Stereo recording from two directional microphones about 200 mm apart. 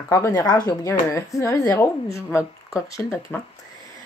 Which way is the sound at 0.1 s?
15° left (ahead or behind).